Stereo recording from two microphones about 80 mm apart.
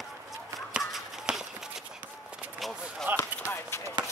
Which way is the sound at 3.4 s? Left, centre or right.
Left.